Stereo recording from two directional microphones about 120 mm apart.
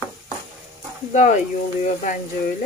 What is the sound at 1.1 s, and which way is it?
Speech, 85° left.